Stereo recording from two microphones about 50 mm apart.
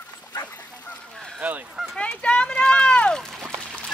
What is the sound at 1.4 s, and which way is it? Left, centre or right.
Honk, right.